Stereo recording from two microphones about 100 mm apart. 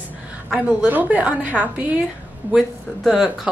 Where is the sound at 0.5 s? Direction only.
10° right (ahead or behind).